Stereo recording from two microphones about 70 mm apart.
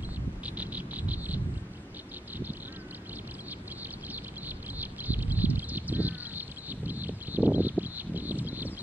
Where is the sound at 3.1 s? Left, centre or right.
Right.